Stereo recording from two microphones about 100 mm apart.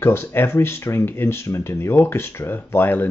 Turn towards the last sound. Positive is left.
turn(degrees=20)  # may be behind; listen again after turning